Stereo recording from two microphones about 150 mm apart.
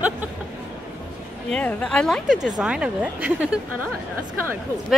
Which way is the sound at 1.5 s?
5° left (ahead or behind).